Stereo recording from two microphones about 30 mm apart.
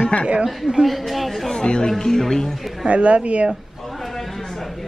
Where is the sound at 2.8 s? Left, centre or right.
Right.